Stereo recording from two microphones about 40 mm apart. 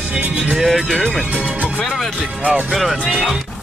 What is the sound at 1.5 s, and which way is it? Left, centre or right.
Music, right.